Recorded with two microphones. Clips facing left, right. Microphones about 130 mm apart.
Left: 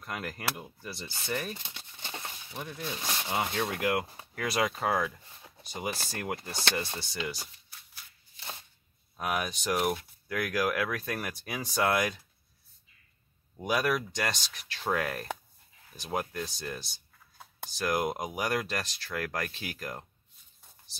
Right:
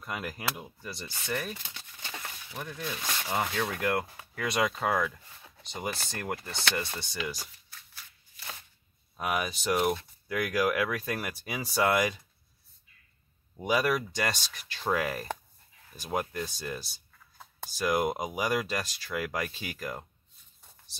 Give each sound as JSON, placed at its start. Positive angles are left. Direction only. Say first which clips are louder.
{"t": 0.0, "sound": "speech", "louder": "right 1 dB", "side_deg": -5}
{"t": 1.5, "sound": "a sound", "louder": "even", "side_deg": 25}
{"t": 2.5, "sound": "speech", "louder": "right 1 dB", "side_deg": 0}
{"t": 3.4, "sound": "speech", "louder": "even", "side_deg": 15}
{"t": 4.0, "sound": "speech", "louder": "even", "side_deg": 20}
{"t": 4.4, "sound": "speech", "louder": "right 1 dB", "side_deg": 5}
{"t": 6.6, "sound": "speech", "louder": "even", "side_deg": 25}
{"t": 8.4, "sound": "shuffling cards", "louder": "left 1 dB", "side_deg": 25}
{"t": 9.1, "sound": "speech", "louder": "right 1 dB", "side_deg": 0}
{"t": 13.7, "sound": "speech", "louder": "right 2 dB", "side_deg": 0}